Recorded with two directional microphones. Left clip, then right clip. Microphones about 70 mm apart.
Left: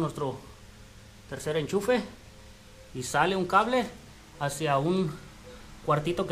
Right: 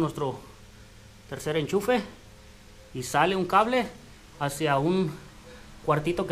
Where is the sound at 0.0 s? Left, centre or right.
Right.